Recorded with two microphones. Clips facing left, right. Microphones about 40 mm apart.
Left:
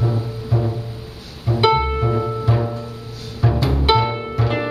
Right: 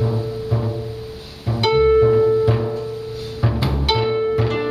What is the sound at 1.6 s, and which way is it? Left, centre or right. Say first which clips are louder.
Music: right 4 dB; centre.